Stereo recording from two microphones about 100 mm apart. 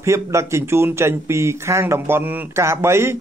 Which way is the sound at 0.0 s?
30° right (ahead or behind).